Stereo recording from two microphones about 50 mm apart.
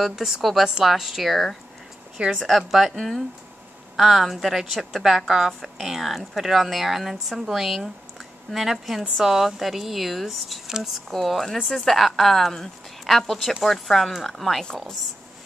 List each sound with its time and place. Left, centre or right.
0.0 s speech: centre
2.1 s a woman's voice: centre
2.4 s speech: centre